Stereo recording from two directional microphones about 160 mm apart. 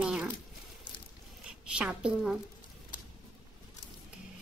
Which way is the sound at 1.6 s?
5° right (ahead or behind).